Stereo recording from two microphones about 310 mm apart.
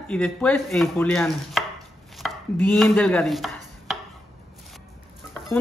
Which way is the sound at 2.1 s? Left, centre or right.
Centre.